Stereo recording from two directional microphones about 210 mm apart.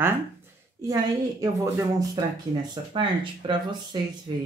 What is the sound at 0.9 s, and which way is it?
Speech, 15° right (ahead or behind).